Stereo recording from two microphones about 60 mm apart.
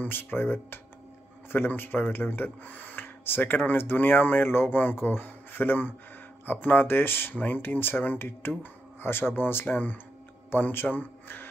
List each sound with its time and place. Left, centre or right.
0.0 s a man's voice: left